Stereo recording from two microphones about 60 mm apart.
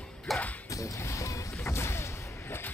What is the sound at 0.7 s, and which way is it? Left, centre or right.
Music, left.